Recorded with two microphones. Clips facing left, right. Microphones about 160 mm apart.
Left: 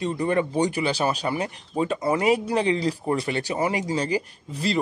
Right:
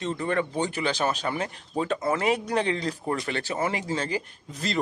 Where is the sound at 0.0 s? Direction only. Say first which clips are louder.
Left 4 dB; 15° left (ahead or behind).